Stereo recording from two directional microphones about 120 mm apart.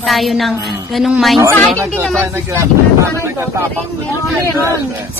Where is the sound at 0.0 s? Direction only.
Centre (ahead or behind).